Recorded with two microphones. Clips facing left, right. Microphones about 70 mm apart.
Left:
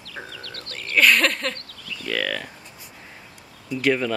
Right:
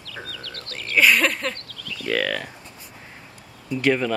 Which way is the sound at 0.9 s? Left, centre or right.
Centre.